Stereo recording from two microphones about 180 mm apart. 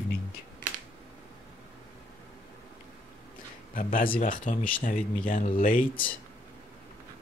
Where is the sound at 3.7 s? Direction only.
50° left (ahead or behind).